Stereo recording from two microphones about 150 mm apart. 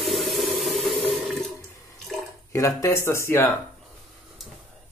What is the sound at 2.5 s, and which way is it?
Speech, 20° left (ahead or behind).